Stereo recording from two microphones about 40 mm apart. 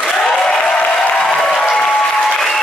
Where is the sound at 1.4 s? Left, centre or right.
Left.